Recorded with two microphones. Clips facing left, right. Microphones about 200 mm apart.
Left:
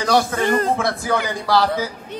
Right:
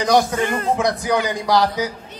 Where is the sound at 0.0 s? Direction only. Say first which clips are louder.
Right 1 dB; 15° right (ahead or behind).